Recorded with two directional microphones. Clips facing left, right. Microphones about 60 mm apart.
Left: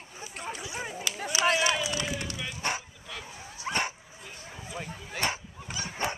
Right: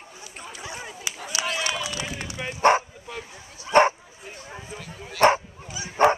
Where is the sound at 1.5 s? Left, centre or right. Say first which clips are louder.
Left 1 dB; left.